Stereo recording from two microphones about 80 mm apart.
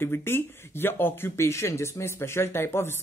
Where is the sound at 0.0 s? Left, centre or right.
Left.